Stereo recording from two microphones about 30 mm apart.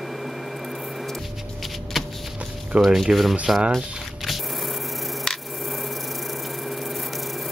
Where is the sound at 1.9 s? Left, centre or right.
Centre.